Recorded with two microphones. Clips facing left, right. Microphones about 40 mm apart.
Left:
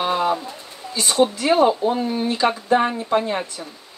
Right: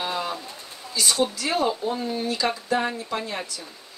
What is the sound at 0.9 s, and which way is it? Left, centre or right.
Speech, left.